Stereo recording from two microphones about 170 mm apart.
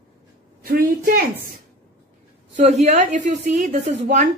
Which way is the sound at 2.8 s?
45° right (ahead or behind).